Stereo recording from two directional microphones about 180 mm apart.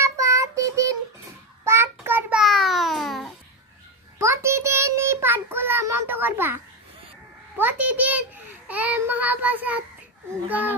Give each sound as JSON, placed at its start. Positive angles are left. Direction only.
{"t": 0.0, "sound": "child singing", "side_deg": -15}
{"t": 4.2, "sound": "child singing", "side_deg": -15}
{"t": 7.5, "sound": "a sound", "side_deg": -10}
{"t": 8.6, "sound": "child singing", "side_deg": -10}